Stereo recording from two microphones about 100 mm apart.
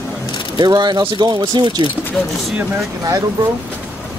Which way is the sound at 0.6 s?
45° right (ahead or behind).